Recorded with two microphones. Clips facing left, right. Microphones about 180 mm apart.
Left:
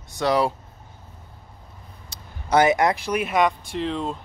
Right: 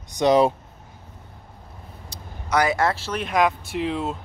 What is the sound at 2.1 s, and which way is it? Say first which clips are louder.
Vehicle: right 4 dB; 60° left (ahead or behind).